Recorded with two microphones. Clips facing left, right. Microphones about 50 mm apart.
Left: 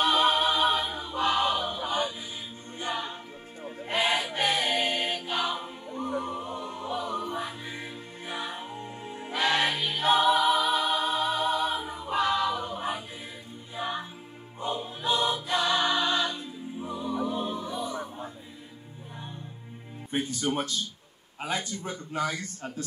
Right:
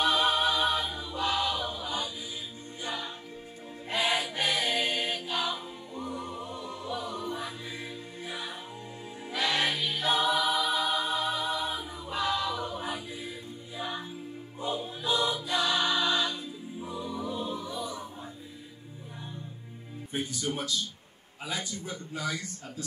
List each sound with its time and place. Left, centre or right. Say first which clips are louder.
0.0 s choir: left 2 dB; left
2.8 s music: left 4 dB; left
3.6 s choir: left 3 dB; left
10.9 s a capella: left 3 dB; left
13.7 s music: left 4 dB; left
14.6 s choir: left 1 dB; left
16.9 s a capella: left 5 dB; left
20.1 s music: left 4 dB; left
21.4 s a man's voice: left 4 dB; left